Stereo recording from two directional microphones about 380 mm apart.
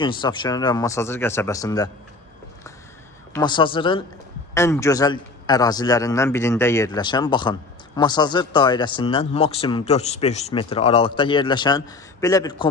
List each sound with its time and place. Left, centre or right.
0.2 s a man's voice: centre
3.3 s a man's voice: centre